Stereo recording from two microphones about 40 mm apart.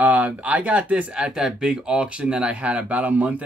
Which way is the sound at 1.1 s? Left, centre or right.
Right.